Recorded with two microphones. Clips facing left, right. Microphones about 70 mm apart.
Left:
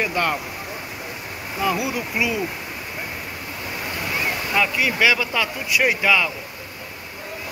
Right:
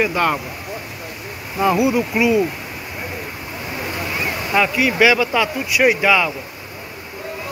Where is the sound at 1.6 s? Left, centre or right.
Right.